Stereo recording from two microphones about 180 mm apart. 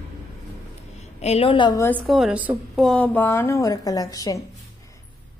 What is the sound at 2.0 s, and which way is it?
A woman's voice, centre (ahead or behind).